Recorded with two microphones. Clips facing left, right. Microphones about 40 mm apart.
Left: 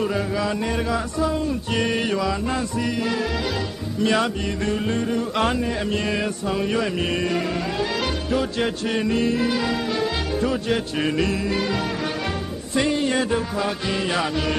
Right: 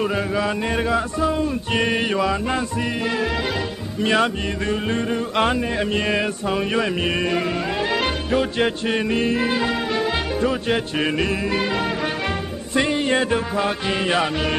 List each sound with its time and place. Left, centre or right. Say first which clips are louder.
0.0 s music: right 2 dB; right